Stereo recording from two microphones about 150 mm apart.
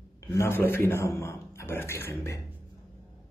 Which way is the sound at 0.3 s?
15° left (ahead or behind).